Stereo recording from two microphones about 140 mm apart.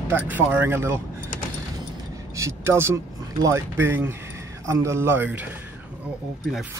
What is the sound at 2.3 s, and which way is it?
Speech, 20° right (ahead or behind).